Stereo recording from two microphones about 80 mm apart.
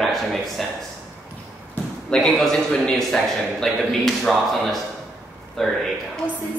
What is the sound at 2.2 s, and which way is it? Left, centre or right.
Speech, centre.